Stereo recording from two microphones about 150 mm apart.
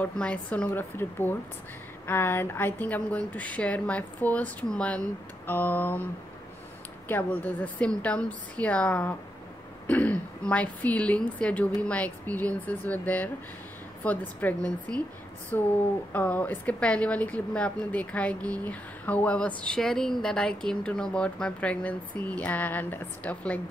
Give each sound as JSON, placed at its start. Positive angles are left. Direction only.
{"t": 0.0, "sound": "a woman's voice", "side_deg": 10}
{"t": 7.1, "sound": "a woman's voice", "side_deg": 10}